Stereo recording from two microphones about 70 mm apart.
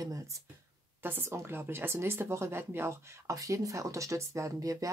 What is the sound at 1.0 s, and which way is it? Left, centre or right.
Speech, right.